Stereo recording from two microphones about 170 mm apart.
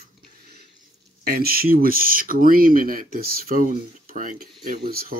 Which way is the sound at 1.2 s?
60° right (ahead or behind).